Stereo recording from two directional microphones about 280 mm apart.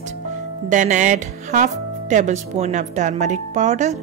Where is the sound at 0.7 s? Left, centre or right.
Right.